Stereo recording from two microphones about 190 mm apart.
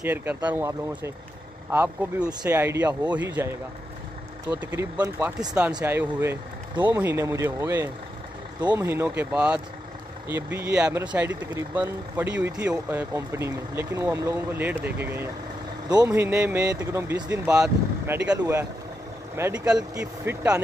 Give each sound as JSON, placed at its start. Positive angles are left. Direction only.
{"t": 0.0, "sound": "speech", "side_deg": -10}
{"t": 4.5, "sound": "speech", "side_deg": -10}
{"t": 5.6, "sound": "speech", "side_deg": -5}